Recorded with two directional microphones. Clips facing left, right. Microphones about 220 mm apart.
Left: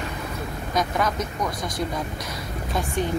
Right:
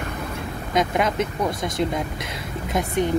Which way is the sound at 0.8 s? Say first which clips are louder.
Right 3 dB; 25° right (ahead or behind).